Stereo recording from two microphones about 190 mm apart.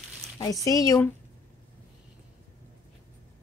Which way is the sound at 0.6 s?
15° left (ahead or behind).